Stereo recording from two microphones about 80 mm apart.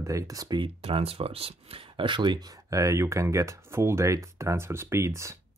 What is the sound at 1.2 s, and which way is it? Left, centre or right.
Speech, right.